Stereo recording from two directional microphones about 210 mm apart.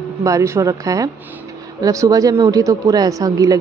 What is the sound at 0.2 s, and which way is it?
A woman's voice, 15° right (ahead or behind).